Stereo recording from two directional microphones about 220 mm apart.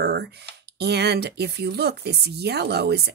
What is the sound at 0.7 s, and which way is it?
Speech, 50° right (ahead or behind).